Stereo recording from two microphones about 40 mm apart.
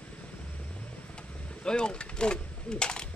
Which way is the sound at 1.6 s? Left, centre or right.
Left.